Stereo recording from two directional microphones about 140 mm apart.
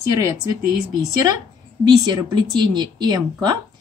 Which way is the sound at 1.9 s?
30° right (ahead or behind).